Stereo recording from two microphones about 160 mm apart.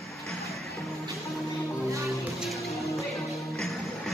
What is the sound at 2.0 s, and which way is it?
Music, centre (ahead or behind).